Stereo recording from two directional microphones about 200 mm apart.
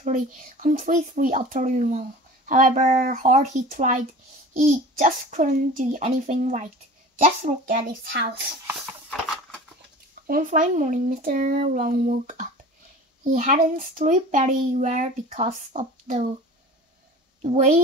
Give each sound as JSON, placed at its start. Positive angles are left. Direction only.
{"t": 0.0, "sound": "speech", "side_deg": -40}
{"t": 8.1, "sound": "speech", "side_deg": -55}
{"t": 10.2, "sound": "speech", "side_deg": -45}
{"t": 17.4, "sound": "a woman's voice", "side_deg": -35}